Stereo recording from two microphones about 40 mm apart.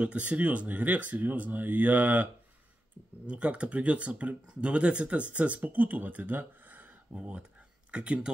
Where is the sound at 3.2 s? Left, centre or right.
Right.